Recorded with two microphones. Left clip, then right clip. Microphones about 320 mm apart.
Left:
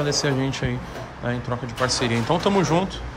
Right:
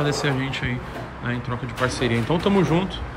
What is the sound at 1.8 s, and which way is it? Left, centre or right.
Speech, centre.